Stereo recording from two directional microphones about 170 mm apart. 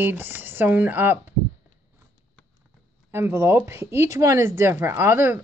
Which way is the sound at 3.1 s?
15° right (ahead or behind).